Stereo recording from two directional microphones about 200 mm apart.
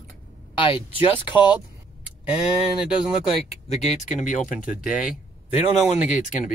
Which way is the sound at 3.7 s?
35° left (ahead or behind).